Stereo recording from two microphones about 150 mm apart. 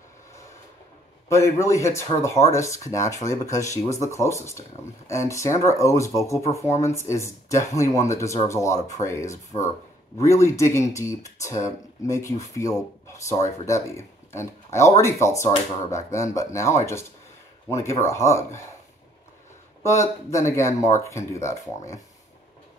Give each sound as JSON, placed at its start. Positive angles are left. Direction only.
{"t": 1.3, "sound": "speech", "side_deg": 20}
{"t": 19.8, "sound": "speech", "side_deg": 20}